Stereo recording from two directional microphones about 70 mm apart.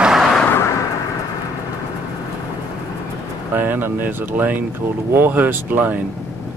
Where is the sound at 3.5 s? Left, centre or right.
Right.